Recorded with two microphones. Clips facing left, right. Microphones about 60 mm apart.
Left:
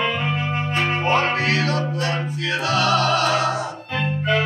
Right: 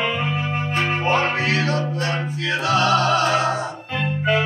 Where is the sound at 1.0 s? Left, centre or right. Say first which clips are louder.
Left 1 dB; right.